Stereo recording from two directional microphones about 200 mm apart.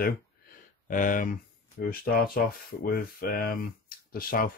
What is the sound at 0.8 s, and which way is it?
Speech, 40° left (ahead or behind).